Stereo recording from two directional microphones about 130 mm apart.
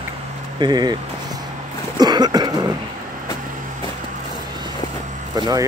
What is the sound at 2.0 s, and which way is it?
Cough, 30° right (ahead or behind).